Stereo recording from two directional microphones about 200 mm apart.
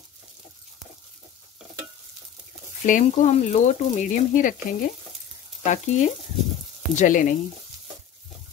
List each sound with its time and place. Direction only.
2.8 s speech: 40° left (ahead or behind)
5.6 s frying: 35° left (ahead or behind)
7.0 s speech: 40° left (ahead or behind)